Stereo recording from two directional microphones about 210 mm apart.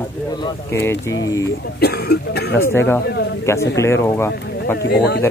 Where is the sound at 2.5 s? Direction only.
10° left (ahead or behind).